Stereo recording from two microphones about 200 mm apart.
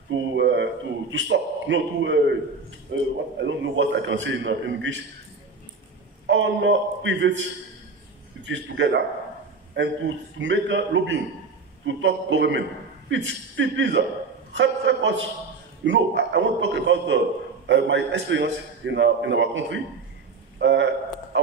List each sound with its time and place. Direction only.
0.1 s a man's voice: 65° right (ahead or behind)
6.2 s a man's voice: 65° right (ahead or behind)
8.5 s a man's voice: 65° right (ahead or behind)
20.5 s a sound: 60° right (ahead or behind)